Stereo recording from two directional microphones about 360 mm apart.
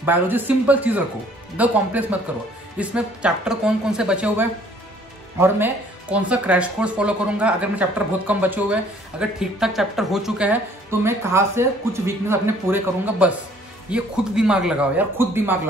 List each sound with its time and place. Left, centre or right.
0.0 s a woman's voice: centre